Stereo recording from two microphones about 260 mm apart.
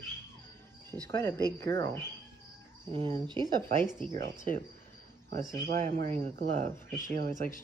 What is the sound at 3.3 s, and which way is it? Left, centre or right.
Speech, centre.